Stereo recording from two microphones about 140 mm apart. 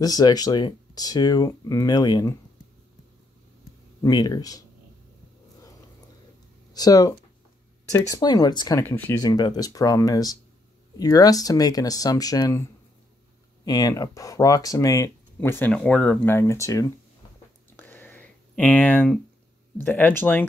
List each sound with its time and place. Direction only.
0.0 s speech: 30° left (ahead or behind)
4.0 s speech: 30° left (ahead or behind)
6.7 s speech: 25° left (ahead or behind)
8.8 s speech: 15° left (ahead or behind)
9.2 s speech: 30° left (ahead or behind)
13.7 s speech: 25° left (ahead or behind)
17.7 s a sound: 15° left (ahead or behind)
19.8 s speech: 15° left (ahead or behind)